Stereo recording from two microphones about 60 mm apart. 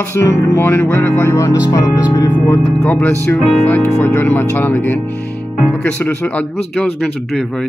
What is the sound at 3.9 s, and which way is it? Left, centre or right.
Speech, left.